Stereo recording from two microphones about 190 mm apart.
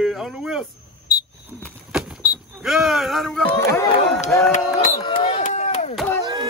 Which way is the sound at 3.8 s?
25° left (ahead or behind).